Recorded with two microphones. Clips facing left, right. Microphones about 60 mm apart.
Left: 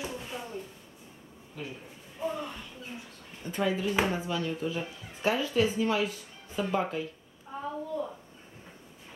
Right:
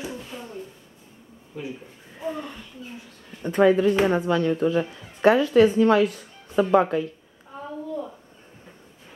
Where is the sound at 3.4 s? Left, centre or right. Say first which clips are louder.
Right 12 dB; right.